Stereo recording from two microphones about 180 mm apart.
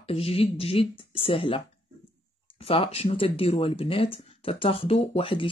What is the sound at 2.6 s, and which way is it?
Speech, 30° left (ahead or behind).